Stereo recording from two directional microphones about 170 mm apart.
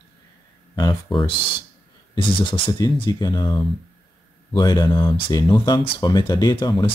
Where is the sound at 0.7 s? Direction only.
25° left (ahead or behind).